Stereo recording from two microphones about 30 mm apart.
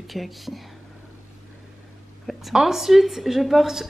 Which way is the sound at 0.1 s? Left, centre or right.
Centre.